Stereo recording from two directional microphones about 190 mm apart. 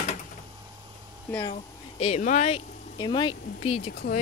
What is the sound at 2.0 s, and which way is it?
Speech, 40° left (ahead or behind).